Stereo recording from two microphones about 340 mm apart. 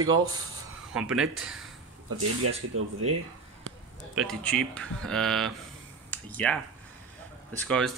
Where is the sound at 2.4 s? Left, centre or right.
Right.